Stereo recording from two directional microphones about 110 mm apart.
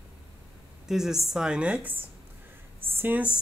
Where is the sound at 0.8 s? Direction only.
5° right (ahead or behind).